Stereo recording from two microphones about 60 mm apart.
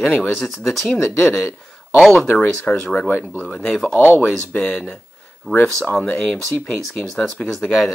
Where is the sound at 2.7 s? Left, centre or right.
Left.